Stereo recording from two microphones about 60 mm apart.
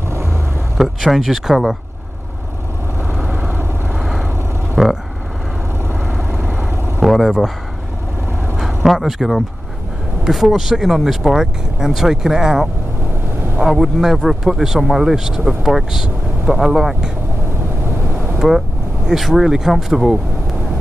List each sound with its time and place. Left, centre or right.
0.7 s speech: centre
3.3 s vehicle: centre
4.0 s vehicle: centre
4.8 s speech: centre
7.0 s speech: centre
8.5 s a sound: centre
10.2 s speech: centre
13.7 s speech: centre
18.4 s speech: centre